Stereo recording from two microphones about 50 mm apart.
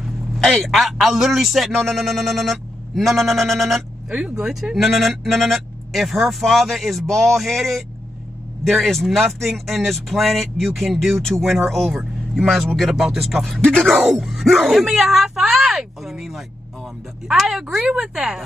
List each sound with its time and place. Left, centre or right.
0.4 s speech: centre
4.1 s speech: centre
4.7 s speech: centre
13.6 s speech: centre
14.1 s speech: centre